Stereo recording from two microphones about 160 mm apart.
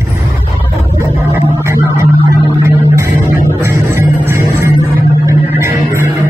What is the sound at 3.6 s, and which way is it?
Music, 15° right (ahead or behind).